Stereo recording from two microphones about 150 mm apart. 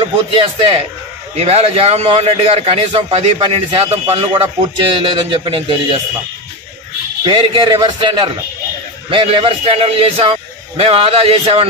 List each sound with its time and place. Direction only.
0.0 s a man's voice: 35° right (ahead or behind)
7.2 s a man's voice: 35° right (ahead or behind)